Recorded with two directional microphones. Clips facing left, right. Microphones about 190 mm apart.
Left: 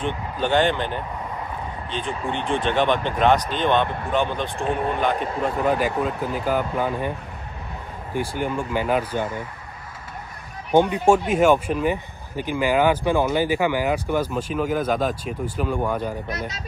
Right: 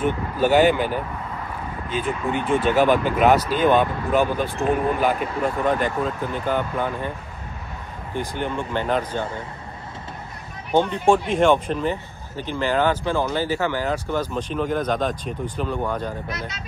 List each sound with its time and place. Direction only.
0.0 s speech: 5° right (ahead or behind)
8.4 s speech: 10° left (ahead or behind)
10.7 s speech: 10° left (ahead or behind)
16.3 s speech: 40° left (ahead or behind)